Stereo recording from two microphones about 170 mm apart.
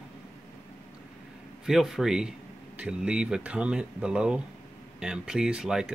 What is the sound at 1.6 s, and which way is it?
Speech, centre (ahead or behind).